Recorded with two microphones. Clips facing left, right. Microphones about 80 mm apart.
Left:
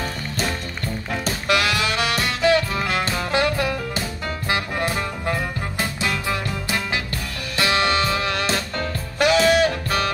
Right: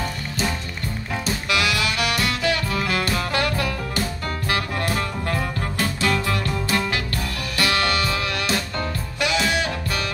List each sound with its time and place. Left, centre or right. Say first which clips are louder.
1.2 s music: left 2 dB; left